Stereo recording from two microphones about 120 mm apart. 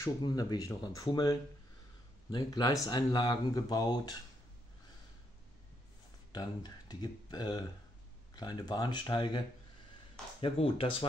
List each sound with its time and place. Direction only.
0.2 s speech: 35° left (ahead or behind)
6.3 s speech: 35° left (ahead or behind)
10.4 s speech: 50° left (ahead or behind)